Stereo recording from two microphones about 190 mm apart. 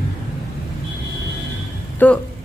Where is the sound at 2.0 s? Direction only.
10° left (ahead or behind).